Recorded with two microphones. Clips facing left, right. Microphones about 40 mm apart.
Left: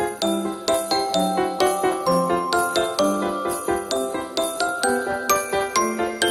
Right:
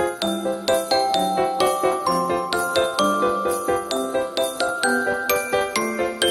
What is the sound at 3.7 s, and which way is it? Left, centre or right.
Jingle bell, right.